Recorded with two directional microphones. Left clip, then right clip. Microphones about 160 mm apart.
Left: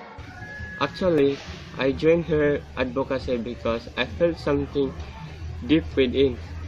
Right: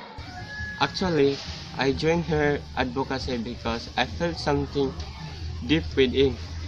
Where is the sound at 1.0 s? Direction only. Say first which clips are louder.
Left 4 dB; 15° right (ahead or behind).